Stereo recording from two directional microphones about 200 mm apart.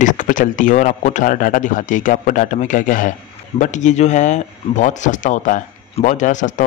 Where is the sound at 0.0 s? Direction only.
40° left (ahead or behind).